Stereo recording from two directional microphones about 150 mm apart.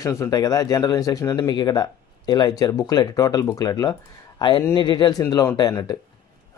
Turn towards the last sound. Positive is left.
turn(degrees=25)  # may be behind; listen again after turning